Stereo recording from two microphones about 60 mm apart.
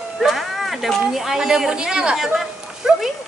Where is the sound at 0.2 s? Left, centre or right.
Centre.